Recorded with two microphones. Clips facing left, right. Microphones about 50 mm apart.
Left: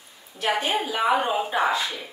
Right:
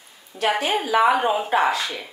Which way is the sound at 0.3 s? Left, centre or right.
Right.